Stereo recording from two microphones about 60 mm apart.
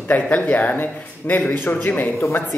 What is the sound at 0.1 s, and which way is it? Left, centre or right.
Speech, left.